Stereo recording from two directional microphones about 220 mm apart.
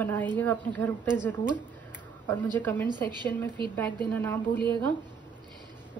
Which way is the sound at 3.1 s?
20° right (ahead or behind).